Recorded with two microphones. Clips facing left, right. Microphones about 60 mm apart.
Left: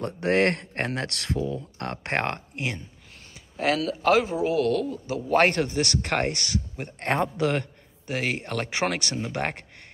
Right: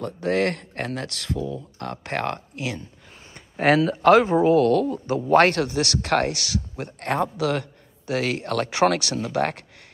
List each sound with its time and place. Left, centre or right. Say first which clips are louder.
0.0 s speech: even; left
3.5 s speech: right 6 dB; centre
5.4 s speech: right 3 dB; left
8.4 s speech: right 6 dB; left